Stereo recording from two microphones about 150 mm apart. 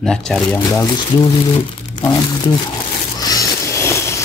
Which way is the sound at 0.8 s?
25° left (ahead or behind).